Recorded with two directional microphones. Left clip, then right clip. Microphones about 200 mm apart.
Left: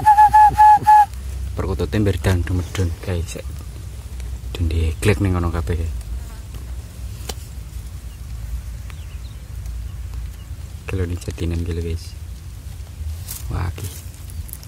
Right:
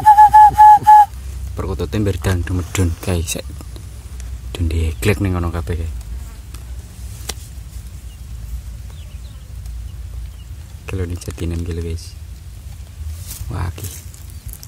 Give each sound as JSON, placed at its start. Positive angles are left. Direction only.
{"t": 0.0, "sound": "a sound", "side_deg": -5}
{"t": 1.6, "sound": "speech", "side_deg": 0}
{"t": 2.8, "sound": "speech", "side_deg": -50}
{"t": 4.5, "sound": "speech", "side_deg": -15}
{"t": 10.9, "sound": "speech", "side_deg": -5}
{"t": 13.5, "sound": "speech", "side_deg": -10}